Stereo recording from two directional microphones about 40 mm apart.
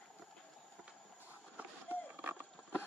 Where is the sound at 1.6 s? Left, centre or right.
Right.